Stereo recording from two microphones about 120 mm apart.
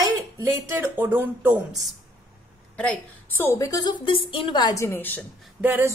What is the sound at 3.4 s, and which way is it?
A woman's voice, 25° left (ahead or behind).